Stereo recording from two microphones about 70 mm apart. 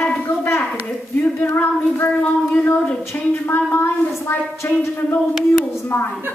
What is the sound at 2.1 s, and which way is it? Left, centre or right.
A woman's voice, centre.